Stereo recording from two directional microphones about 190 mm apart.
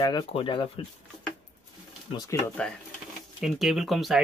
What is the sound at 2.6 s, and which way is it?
Speech, 5° left (ahead or behind).